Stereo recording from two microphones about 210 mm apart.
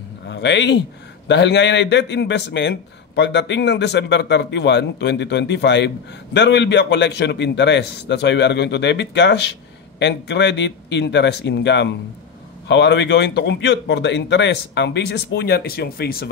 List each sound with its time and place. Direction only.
0.3 s a man's voice: 55° left (ahead or behind)